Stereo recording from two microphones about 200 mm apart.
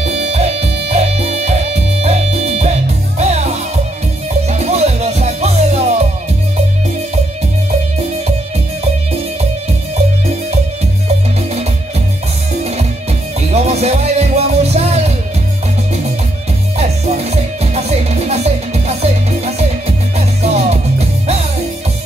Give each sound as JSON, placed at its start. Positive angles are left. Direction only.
{"t": 0.0, "sound": "music", "side_deg": -30}
{"t": 4.5, "sound": "music", "side_deg": -35}
{"t": 13.6, "sound": "music", "side_deg": -35}
{"t": 16.7, "sound": "music", "side_deg": -30}